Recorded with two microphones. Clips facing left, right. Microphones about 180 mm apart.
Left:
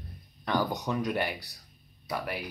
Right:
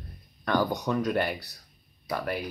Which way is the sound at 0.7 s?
20° left (ahead or behind).